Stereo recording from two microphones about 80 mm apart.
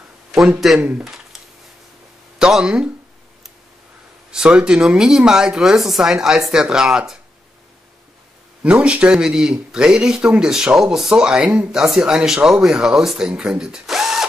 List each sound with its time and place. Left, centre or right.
0.3 s a man's voice: centre
0.7 s speech: centre
2.3 s speech: centre
4.3 s speech: centre
8.6 s speech: centre